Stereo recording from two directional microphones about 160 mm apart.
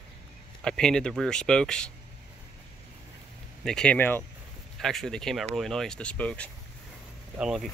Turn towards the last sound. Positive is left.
turn(degrees=0)  # may be behind; listen again after turning